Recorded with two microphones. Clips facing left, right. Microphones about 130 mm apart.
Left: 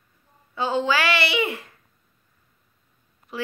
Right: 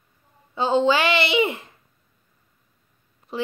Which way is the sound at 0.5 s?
25° right (ahead or behind).